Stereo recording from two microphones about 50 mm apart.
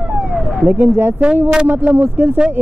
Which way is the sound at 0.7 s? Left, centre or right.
Right.